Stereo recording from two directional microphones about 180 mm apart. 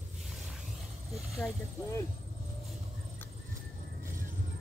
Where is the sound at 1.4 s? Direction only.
15° left (ahead or behind).